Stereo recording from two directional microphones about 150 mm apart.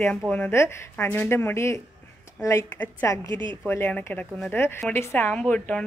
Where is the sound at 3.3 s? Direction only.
30° right (ahead or behind).